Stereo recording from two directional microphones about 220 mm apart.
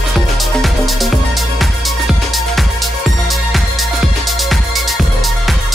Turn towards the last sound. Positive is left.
turn(degrees=0)  # may be behind; listen again after turning